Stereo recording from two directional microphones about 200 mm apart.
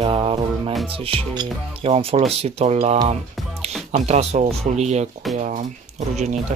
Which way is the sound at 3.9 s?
35° right (ahead or behind).